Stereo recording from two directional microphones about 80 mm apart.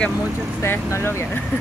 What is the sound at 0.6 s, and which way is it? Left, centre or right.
Speech, left.